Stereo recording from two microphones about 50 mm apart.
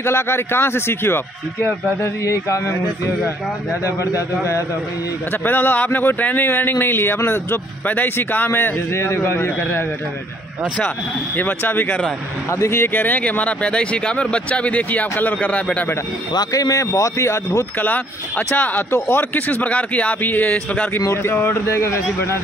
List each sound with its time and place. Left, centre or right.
0.0 s a man's voice: left
2.2 s speech: left
3.8 s speech: left
5.4 s a man's voice: left
11.3 s a man's voice: left
12.4 s speech: left
13.2 s speech: left
16.7 s speech: left
17.7 s a man's voice: left
18.9 s speech: left
19.3 s a man's voice: left
21.1 s a man's voice: left
21.6 s a man's voice: left